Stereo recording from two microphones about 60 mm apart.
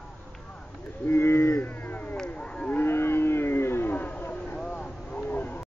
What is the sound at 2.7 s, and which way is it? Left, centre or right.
Cattle, left.